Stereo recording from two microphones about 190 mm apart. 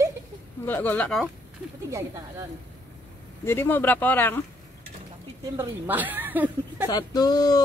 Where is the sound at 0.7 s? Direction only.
10° left (ahead or behind).